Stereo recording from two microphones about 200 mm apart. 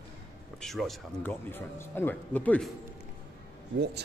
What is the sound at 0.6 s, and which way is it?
Speech, centre (ahead or behind).